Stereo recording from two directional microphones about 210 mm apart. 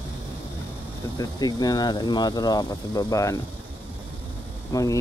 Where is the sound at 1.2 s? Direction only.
20° left (ahead or behind).